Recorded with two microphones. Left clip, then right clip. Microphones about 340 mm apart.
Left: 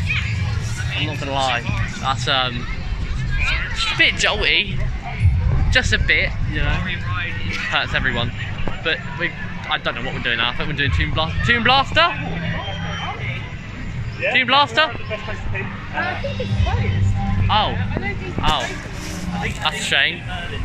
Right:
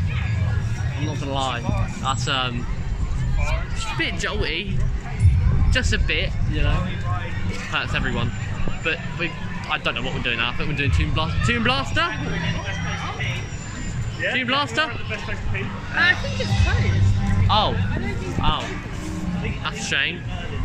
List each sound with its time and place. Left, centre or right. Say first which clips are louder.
1.3 s speech: left 4 dB; centre
5.7 s speech: left 7 dB; centre
7.7 s speech: left 4 dB; centre
14.3 s speech: left 7 dB; centre
17.5 s speech: left 1 dB; centre
19.6 s speech: left 5 dB; centre